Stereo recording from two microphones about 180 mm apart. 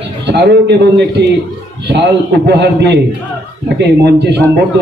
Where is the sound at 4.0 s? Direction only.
65° right (ahead or behind).